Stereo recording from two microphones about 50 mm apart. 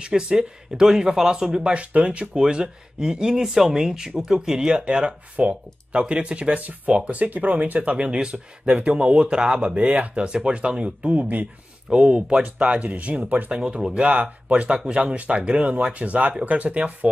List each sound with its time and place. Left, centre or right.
0.0 s speech: centre
11.9 s speech: centre
13.5 s speech: centre
14.0 s speech: right